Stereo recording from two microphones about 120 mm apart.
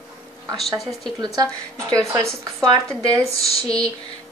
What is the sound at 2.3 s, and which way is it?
Speech, 5° left (ahead or behind).